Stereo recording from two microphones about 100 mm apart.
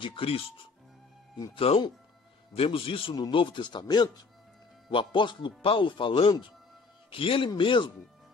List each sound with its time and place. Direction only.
0.0 s speech: 65° left (ahead or behind)
1.5 s speech: 70° left (ahead or behind); by 4.1 s 45° left (ahead or behind)
4.9 s speech: 55° left (ahead or behind)